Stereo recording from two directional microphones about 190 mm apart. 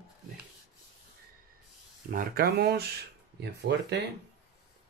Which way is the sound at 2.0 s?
50° right (ahead or behind).